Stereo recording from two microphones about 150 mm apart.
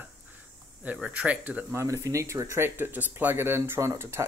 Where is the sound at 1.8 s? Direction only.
20° right (ahead or behind).